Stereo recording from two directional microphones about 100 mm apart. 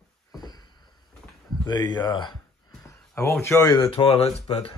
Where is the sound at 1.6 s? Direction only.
45° left (ahead or behind).